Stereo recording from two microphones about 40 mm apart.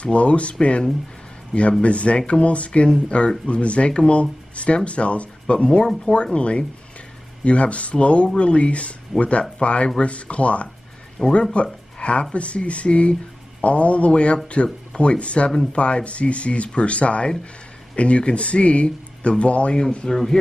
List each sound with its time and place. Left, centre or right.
0.0 s speech: left
11.2 s speech: left
20.1 s speech: centre